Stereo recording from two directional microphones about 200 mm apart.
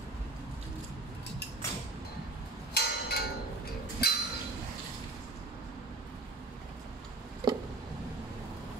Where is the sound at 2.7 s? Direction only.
55° left (ahead or behind).